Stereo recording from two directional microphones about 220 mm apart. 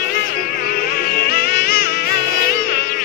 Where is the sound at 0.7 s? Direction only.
40° left (ahead or behind).